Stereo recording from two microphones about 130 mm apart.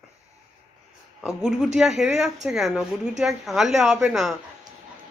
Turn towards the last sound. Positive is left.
turn(degrees=0)  # may be behind; listen again after turning